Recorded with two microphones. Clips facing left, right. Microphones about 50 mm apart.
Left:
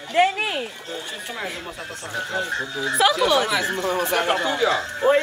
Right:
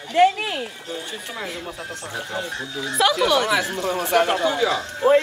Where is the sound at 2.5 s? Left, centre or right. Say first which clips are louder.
Left 3 dB; left.